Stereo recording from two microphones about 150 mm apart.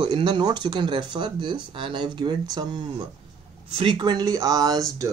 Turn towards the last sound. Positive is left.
turn(degrees=-25)  # may be behind; listen again after turning